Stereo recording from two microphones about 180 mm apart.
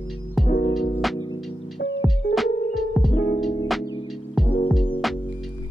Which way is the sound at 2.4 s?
Centre (ahead or behind).